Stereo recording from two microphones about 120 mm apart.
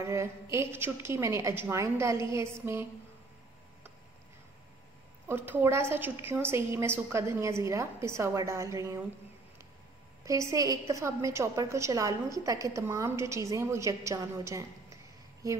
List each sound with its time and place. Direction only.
0.0 s a woman's voice: 25° right (ahead or behind)
5.3 s a woman's voice: 15° right (ahead or behind)
10.2 s a woman's voice: 25° right (ahead or behind)